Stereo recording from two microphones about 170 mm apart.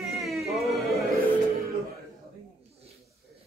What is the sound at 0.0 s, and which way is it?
Music, centre (ahead or behind).